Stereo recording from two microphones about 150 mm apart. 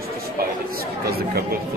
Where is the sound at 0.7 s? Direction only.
90° right.